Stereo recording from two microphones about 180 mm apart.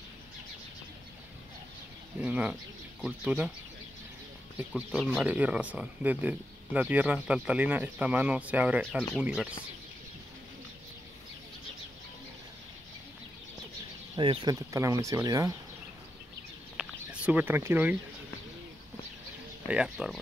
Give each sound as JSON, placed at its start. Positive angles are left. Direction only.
{"t": 2.1, "sound": "speech", "side_deg": -10}
{"t": 4.6, "sound": "speech", "side_deg": -5}
{"t": 14.1, "sound": "speech", "side_deg": -25}
{"t": 16.7, "sound": "chicken", "side_deg": -5}
{"t": 19.7, "sound": "speech", "side_deg": -5}